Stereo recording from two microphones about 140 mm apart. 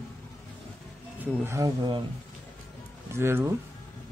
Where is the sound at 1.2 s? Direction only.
20° right (ahead or behind).